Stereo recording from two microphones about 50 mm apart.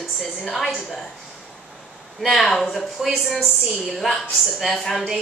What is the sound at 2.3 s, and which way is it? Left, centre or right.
Speech, centre.